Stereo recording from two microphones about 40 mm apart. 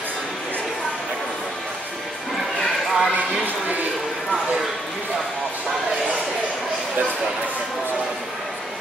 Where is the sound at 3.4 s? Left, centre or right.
Right.